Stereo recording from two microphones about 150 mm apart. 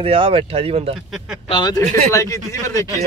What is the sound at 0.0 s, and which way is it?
Speech, 35° right (ahead or behind).